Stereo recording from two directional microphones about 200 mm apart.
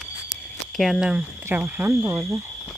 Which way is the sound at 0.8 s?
Centre (ahead or behind).